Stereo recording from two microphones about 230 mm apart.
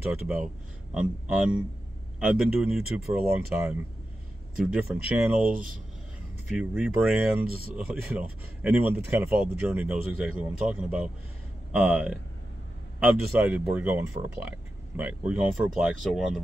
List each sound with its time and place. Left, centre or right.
0.9 s speech: centre
5.5 s speech: right
6.5 s speech: centre
7.4 s speech: right
7.7 s speech: centre